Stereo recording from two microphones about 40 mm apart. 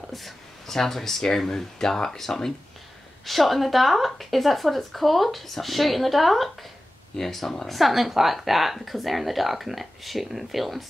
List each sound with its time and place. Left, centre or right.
0.1 s speech: centre